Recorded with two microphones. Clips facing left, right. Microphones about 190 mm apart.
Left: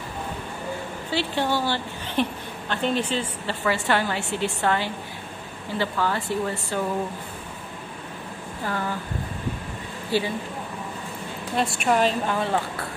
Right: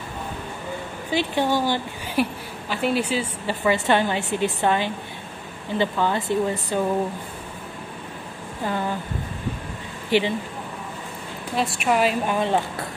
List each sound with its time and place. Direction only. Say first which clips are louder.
1.1 s a woman's voice: right 3 dB; 15° right (ahead or behind)
3.6 s a woman's voice: right 3 dB; 20° right (ahead or behind)
8.6 s a woman's voice: right 3 dB; 20° right (ahead or behind)
11.5 s speech: even; centre (ahead or behind); by 12.5 s 15° right (ahead or behind)